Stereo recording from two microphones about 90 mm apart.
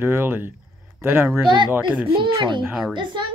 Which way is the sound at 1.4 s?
60° right (ahead or behind).